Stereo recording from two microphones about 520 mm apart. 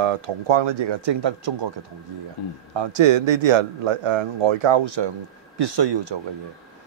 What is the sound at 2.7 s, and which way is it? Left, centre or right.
A man's voice, right.